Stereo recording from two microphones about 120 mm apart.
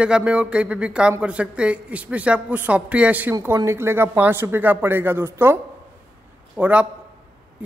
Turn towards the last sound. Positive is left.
turn(degrees=-10)  # may be behind; listen again after turning